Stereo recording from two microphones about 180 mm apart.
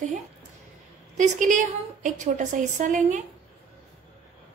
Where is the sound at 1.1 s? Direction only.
45° right (ahead or behind).